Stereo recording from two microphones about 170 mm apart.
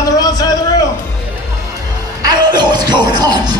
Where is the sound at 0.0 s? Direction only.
20° left (ahead or behind).